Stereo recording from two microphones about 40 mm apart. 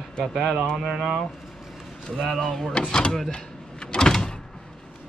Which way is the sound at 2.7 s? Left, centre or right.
Left.